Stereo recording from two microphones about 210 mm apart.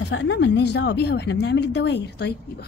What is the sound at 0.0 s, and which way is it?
Speech, 55° left (ahead or behind).